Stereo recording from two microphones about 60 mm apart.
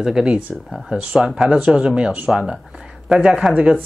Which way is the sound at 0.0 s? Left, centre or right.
Centre.